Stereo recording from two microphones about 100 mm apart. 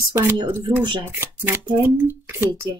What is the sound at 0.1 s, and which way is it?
Speech, 20° right (ahead or behind).